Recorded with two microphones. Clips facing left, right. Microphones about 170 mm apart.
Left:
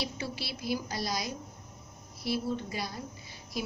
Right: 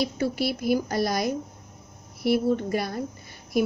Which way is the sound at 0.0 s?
50° right (ahead or behind).